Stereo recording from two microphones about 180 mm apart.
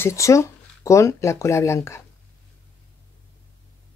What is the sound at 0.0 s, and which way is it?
Speech, 15° left (ahead or behind).